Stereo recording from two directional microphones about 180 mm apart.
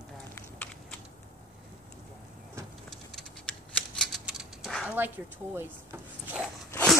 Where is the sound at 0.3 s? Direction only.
5° left (ahead or behind).